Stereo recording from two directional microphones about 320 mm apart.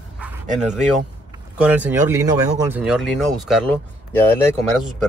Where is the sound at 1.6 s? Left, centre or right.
Centre.